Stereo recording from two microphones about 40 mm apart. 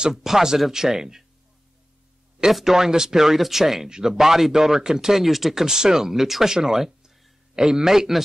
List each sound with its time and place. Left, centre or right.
0.1 s speech: centre
2.5 s speech: centre